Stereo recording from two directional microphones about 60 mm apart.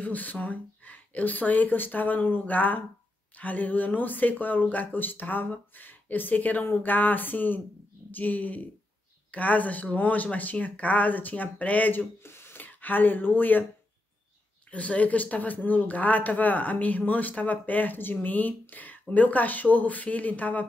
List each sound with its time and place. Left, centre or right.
0.0 s speech: left
6.7 s a sound: left
8.1 s speech: left
12.2 s speech: left
14.7 s speech: left